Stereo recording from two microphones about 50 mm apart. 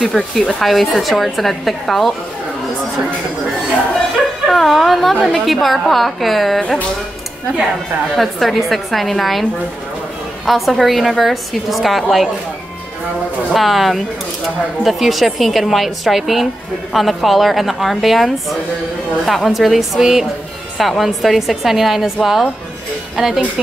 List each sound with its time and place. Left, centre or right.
0.0 s a woman's voice: centre
4.5 s a woman's voice: centre
8.2 s a woman's voice: centre
13.5 s a woman's voice: centre